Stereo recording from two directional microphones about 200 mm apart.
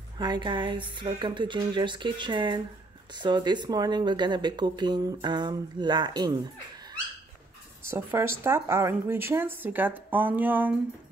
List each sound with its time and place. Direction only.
0.2 s speech: 20° right (ahead or behind)